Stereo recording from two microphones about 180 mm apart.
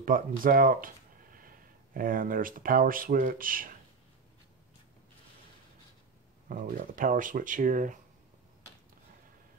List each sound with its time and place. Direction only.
0.0 s speech: 50° right (ahead or behind)
6.5 s speech: 50° right (ahead or behind)